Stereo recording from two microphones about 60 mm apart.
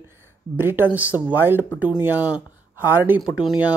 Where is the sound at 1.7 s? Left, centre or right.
Right.